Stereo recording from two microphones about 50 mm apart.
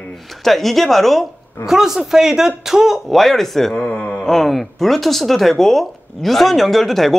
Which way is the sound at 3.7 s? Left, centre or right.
Left.